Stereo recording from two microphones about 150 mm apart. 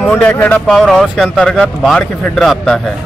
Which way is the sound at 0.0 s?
10° left (ahead or behind).